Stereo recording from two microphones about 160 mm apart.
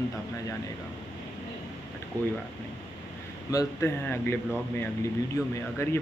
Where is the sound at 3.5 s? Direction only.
20° left (ahead or behind).